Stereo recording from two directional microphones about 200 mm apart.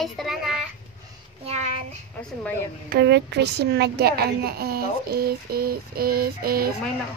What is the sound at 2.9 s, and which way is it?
A woman's voice, 55° right (ahead or behind).